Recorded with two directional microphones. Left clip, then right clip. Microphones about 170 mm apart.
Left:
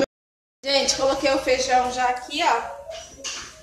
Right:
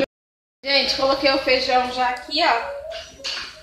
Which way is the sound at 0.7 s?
Centre (ahead or behind).